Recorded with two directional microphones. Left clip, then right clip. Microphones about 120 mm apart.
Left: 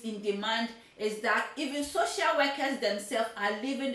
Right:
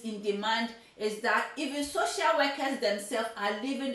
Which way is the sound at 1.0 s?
15° right (ahead or behind).